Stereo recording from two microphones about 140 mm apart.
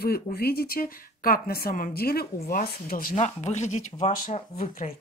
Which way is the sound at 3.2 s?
55° left (ahead or behind).